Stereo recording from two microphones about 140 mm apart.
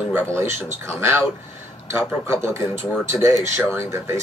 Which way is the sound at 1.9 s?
15° right (ahead or behind).